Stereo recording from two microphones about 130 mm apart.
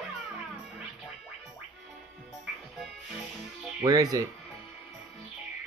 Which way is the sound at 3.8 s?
25° right (ahead or behind).